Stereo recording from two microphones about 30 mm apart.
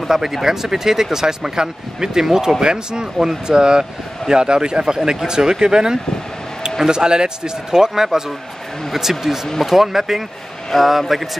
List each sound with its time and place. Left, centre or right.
0.1 s speech: centre
2.6 s speech: right
9.2 s speech: centre